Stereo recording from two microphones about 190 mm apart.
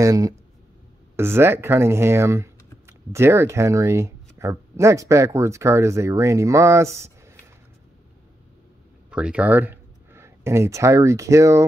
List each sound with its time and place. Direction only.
0.0 s speech: 20° right (ahead or behind)
9.1 s speech: 5° right (ahead or behind)